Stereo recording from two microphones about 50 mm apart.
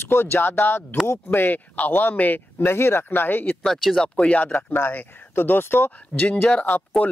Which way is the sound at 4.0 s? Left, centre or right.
Centre.